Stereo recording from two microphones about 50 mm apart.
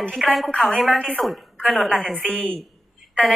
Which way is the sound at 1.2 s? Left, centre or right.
Centre.